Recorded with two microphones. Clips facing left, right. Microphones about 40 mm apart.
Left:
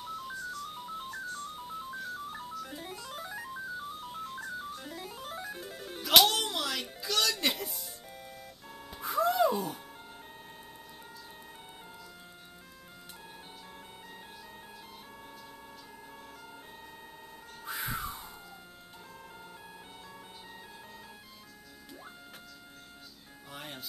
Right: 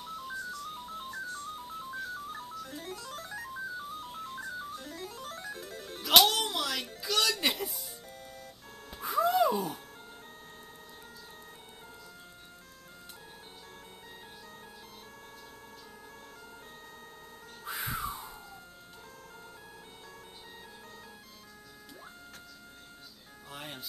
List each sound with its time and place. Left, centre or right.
0.0 s ringtone: centre
3.5 s music: centre
6.0 s music: centre
17.6 s music: centre
23.5 s music: centre